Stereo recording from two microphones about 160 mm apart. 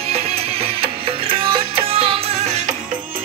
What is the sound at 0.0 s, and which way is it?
Music, 40° right (ahead or behind).